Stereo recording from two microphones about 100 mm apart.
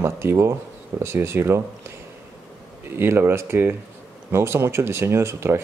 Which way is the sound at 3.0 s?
25° right (ahead or behind).